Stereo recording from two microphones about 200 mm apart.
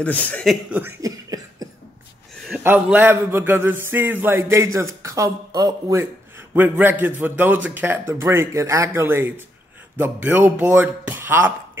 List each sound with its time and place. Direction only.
0.0 s speech: 5° left (ahead or behind)
0.7 s beatboxing: 10° right (ahead or behind)
2.6 s a man's voice: 10° right (ahead or behind)